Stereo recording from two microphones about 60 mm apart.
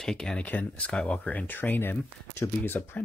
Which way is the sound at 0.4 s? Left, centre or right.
Left.